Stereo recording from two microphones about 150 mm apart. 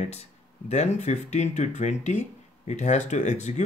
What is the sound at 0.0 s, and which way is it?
Speech, 45° left (ahead or behind).